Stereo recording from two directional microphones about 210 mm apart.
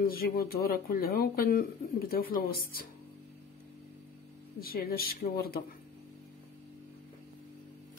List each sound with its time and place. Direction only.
0.0 s speech: 45° left (ahead or behind)
4.6 s speech: 45° left (ahead or behind)